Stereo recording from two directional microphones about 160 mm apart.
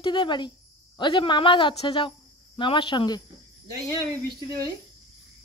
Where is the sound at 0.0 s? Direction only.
30° left (ahead or behind).